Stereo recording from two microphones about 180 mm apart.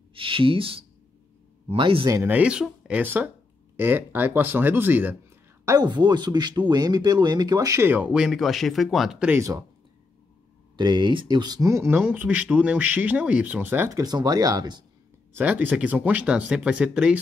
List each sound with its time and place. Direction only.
0.1 s speech: 30° right (ahead or behind)
2.1 s speech: 10° right (ahead or behind)
5.7 s speech: 25° right (ahead or behind); by 9.4 s 5° right (ahead or behind)
9.4 s speech: 20° right (ahead or behind)
10.8 s speech: 25° right (ahead or behind)
15.3 s speech: 10° right (ahead or behind)